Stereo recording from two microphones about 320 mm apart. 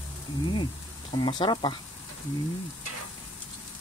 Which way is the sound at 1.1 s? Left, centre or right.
Centre.